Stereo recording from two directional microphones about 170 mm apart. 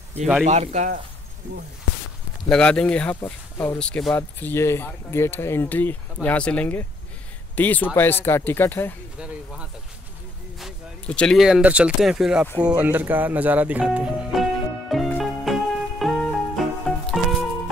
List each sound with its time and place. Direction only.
0.5 s speech: 45° right (ahead or behind)
2.5 s speech: 5° left (ahead or behind)
3.7 s speech: 5° left (ahead or behind)
10.6 s speech: 5° left (ahead or behind)
14.9 s music: centre (ahead or behind)